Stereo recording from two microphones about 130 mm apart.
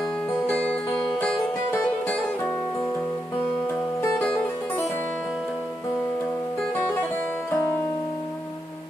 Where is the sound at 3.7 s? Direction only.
10° left (ahead or behind).